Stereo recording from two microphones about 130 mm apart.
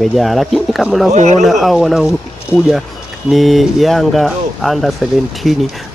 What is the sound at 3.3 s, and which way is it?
Speech, centre (ahead or behind).